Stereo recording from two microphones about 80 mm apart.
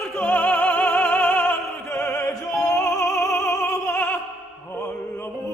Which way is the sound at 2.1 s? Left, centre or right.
Left.